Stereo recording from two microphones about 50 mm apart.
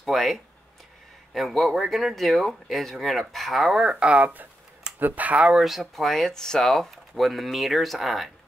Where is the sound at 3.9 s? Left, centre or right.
Right.